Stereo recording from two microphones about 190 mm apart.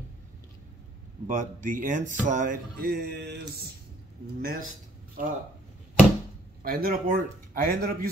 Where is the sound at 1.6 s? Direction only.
45° right (ahead or behind).